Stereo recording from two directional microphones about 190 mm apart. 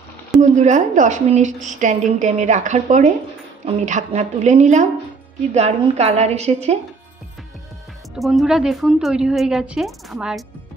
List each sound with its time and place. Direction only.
0.4 s a woman's voice: 40° right (ahead or behind)
8.2 s speech: centre (ahead or behind)